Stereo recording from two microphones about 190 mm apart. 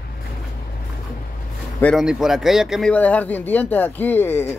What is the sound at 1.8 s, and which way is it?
A man's voice, 5° left (ahead or behind).